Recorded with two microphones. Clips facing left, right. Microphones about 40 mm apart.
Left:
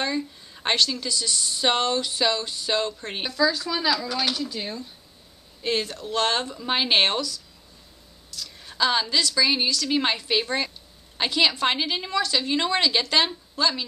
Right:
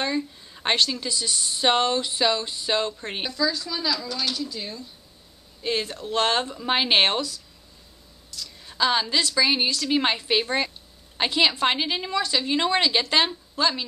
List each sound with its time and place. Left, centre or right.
0.2 s speech: centre
0.7 s speech: centre
3.3 s speech: centre
5.6 s speech: centre
8.3 s a sound: centre
9.2 s speech: centre
13.6 s speech: right